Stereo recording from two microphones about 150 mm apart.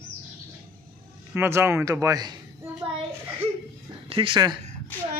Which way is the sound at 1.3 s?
15° right (ahead or behind).